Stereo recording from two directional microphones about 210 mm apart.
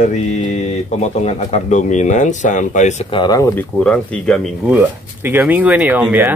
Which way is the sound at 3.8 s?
5° left (ahead or behind).